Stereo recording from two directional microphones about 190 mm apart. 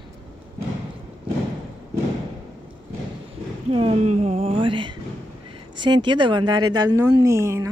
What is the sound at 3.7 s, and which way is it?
A woman's voice, 30° right (ahead or behind).